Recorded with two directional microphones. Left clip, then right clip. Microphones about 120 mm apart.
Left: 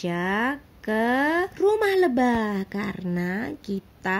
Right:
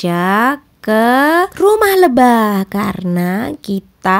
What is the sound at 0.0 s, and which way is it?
A woman's voice, 40° right (ahead or behind).